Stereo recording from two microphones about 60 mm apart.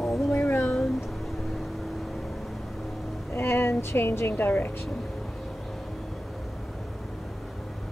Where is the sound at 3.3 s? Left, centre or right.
Left.